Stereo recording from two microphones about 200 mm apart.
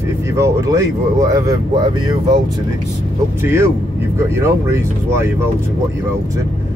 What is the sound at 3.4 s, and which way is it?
Speech, 10° right (ahead or behind).